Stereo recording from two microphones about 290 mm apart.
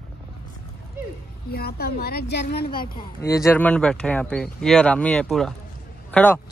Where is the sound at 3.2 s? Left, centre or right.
Centre.